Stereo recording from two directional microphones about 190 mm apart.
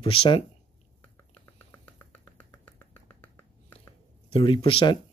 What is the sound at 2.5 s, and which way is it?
Finger snapping, 10° left (ahead or behind).